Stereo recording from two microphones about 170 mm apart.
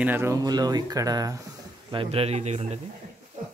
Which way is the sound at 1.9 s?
35° right (ahead or behind).